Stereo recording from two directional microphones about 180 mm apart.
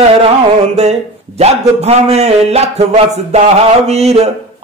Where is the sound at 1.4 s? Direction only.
35° right (ahead or behind).